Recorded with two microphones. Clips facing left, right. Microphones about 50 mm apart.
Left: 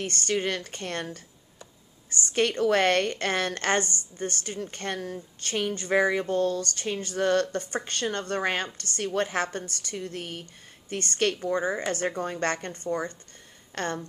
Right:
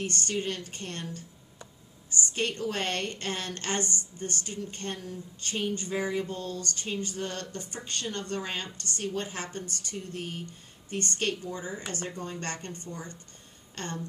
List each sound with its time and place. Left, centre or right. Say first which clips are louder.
0.0 s a woman's voice: left 4 dB; left
2.3 s a woman's voice: left 9 dB; left
10.4 s a woman's voice: right 3 dB; left